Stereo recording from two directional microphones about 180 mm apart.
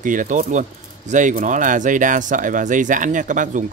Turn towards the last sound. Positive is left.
turn(degrees=-45)  # may be behind; listen again after turning